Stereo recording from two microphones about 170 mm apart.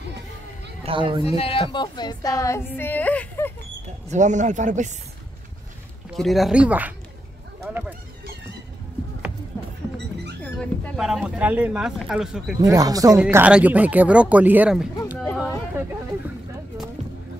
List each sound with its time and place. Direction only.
0.8 s speech: 30° right (ahead or behind)
1.3 s a woman's voice: 35° left (ahead or behind); by 3.5 s 10° left (ahead or behind)
4.1 s a man's voice: 45° right (ahead or behind)
6.1 s speech: centre (ahead or behind)
10.4 s speech: centre (ahead or behind)
12.5 s speech: 20° right (ahead or behind)
13.2 s speech: 10° right (ahead or behind)